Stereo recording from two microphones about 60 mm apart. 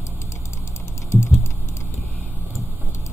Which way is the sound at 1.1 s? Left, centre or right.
Left.